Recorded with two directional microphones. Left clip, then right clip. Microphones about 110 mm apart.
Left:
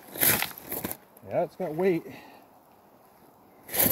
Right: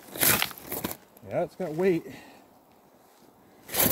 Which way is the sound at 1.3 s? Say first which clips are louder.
Left 1 dB; 35° right (ahead or behind).